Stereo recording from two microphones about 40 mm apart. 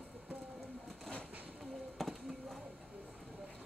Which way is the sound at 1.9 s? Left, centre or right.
Centre.